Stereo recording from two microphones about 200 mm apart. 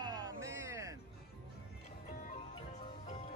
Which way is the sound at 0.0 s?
15° right (ahead or behind).